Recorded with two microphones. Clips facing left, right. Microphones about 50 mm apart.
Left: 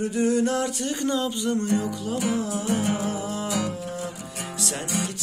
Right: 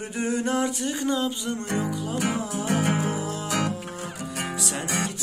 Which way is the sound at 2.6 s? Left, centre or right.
Right.